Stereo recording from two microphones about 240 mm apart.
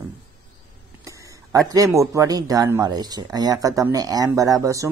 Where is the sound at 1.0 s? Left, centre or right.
Centre.